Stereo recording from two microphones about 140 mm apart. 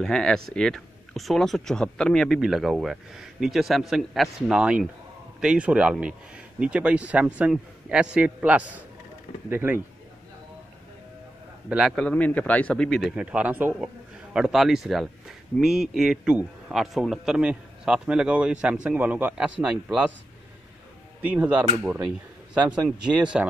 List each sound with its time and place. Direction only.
0.0 s speech: 5° left (ahead or behind); by 9.8 s 15° right (ahead or behind)
11.9 s speech: 10° left (ahead or behind); by 20.1 s 5° right (ahead or behind)
21.2 s speech: 10° right (ahead or behind)